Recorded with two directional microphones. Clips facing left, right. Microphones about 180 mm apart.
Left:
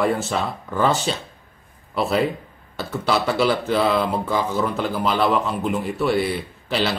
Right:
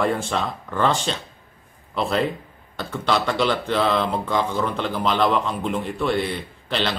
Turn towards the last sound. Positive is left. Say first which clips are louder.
# left 2 dB
turn(degrees=5)  # may be behind; listen again after turning